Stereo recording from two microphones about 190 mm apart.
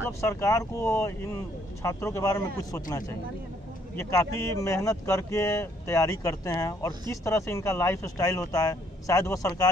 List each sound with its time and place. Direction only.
0.2 s speech: 15° left (ahead or behind)